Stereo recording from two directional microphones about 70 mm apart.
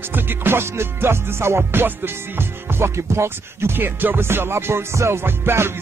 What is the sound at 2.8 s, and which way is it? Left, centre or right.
Music, right.